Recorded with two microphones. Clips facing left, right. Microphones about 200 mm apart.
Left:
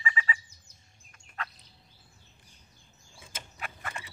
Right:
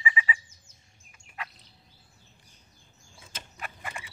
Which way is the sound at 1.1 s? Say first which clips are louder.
Left 1 dB; 10° right (ahead or behind).